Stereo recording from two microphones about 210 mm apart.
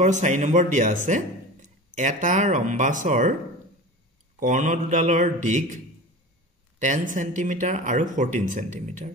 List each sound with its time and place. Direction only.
0.0 s speech: 35° right (ahead or behind)
4.4 s speech: 35° right (ahead or behind)
7.2 s speech: 35° right (ahead or behind)